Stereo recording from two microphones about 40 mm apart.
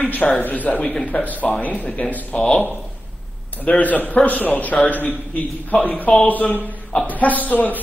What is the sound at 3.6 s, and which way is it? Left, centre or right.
A man's voice, left.